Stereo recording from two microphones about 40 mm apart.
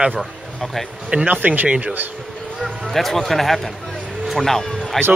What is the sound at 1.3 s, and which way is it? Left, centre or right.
Speech, right.